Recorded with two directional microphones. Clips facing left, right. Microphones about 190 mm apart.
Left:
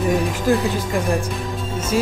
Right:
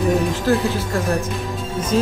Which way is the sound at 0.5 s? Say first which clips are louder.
Left 1 dB; 15° left (ahead or behind).